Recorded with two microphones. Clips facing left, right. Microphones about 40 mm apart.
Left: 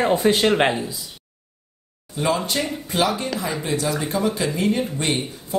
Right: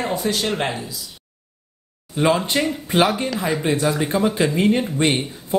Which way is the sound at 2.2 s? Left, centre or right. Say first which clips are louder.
Right 4 dB; right.